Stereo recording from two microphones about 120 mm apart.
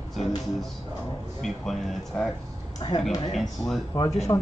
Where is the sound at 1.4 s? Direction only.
Centre (ahead or behind).